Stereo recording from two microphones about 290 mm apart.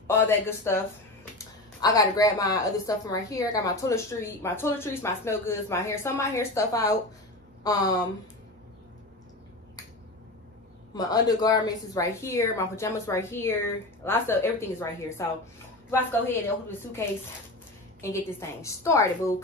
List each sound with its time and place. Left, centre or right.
0.0 s a woman's voice: centre
11.0 s a woman's voice: centre
18.0 s a woman's voice: centre